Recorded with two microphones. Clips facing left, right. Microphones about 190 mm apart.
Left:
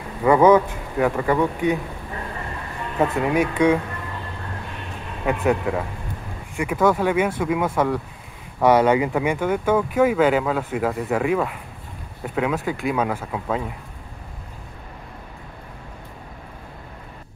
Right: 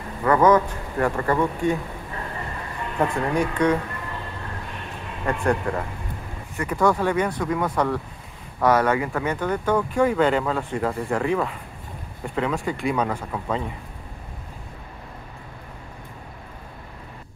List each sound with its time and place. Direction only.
0.2 s speech: 10° left (ahead or behind)
1.4 s speech: 20° left (ahead or behind)
3.0 s speech: 5° left (ahead or behind)
5.2 s speech: 5° left (ahead or behind)